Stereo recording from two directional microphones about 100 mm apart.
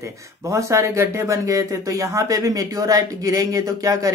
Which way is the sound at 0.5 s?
30° right (ahead or behind).